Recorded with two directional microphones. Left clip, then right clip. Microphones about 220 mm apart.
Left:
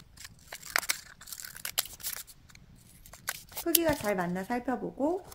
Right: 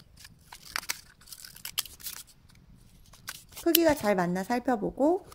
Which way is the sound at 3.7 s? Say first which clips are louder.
Right 5 dB; 25° right (ahead or behind).